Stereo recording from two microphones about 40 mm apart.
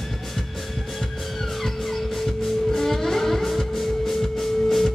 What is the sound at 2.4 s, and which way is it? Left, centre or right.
Music, centre.